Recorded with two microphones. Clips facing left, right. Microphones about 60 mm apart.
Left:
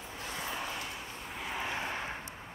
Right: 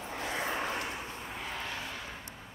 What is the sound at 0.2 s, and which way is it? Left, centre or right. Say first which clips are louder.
Vehicle: right 4 dB; right.